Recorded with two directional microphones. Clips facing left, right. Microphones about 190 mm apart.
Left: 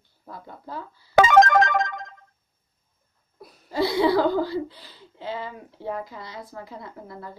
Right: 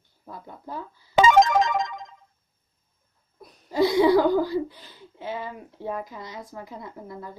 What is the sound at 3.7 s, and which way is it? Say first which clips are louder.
Speech: right 3 dB; 15° right (ahead or behind).